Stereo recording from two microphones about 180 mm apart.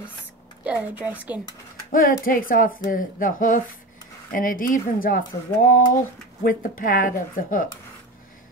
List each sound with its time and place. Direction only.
0.7 s a woman's voice: 10° right (ahead or behind)
1.9 s speech: 50° left (ahead or behind)